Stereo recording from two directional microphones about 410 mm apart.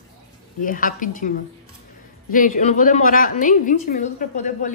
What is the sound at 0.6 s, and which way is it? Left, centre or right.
A woman's voice, centre.